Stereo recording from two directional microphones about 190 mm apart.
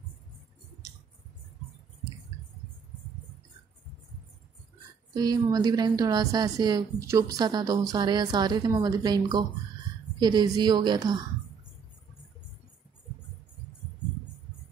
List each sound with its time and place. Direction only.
5.1 s speech: 20° right (ahead or behind)